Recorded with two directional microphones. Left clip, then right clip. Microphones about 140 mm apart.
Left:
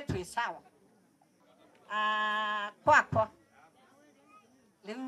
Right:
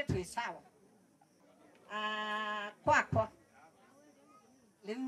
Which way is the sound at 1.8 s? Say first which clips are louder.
Left 7 dB; 35° left (ahead or behind).